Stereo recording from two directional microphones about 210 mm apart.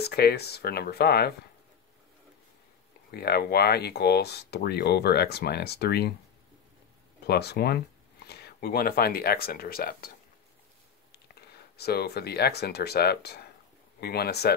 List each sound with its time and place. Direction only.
0.0 s speech: 50° left (ahead or behind)
3.1 s speech: 50° left (ahead or behind)
7.2 s speech: 50° left (ahead or behind)